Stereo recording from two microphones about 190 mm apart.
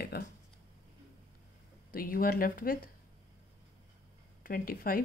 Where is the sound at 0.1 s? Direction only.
55° left (ahead or behind).